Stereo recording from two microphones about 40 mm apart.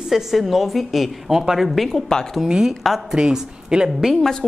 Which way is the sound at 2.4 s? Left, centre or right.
Centre.